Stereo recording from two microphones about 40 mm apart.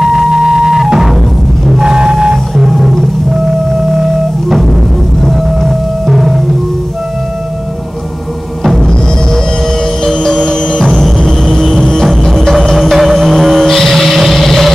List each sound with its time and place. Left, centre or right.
0.0 s music: centre
1.8 s vehicle: right
2.5 s music: centre
5.2 s music: centre
8.7 s music: centre
10.9 s music: centre
14.1 s vehicle: centre